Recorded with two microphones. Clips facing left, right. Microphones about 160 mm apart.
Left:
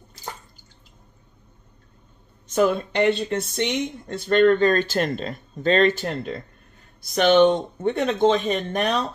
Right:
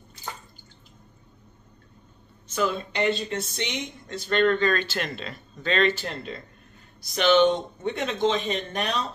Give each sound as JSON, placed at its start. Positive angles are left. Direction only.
{"t": 2.5, "sound": "speech", "side_deg": 55}